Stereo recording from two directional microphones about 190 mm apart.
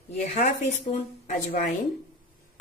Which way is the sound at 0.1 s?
40° left (ahead or behind).